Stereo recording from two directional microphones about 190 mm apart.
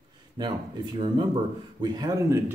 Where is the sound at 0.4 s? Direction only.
20° right (ahead or behind).